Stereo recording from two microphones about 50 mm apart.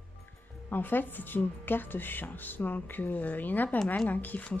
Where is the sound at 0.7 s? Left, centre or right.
Left.